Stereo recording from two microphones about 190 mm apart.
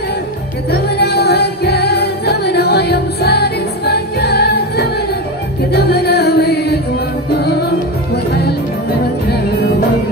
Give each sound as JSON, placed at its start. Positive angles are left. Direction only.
{"t": 0.7, "sound": "music", "side_deg": 60}